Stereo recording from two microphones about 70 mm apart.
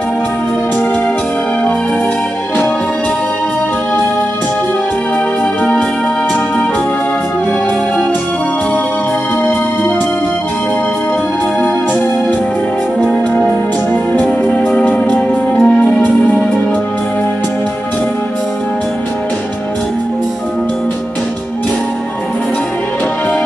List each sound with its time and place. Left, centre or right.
14.1 s music: left